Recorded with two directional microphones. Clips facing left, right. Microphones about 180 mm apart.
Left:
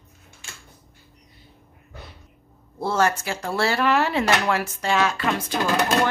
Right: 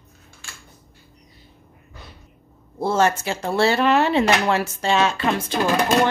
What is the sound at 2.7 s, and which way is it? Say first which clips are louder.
Speech: right 3 dB; 20° right (ahead or behind).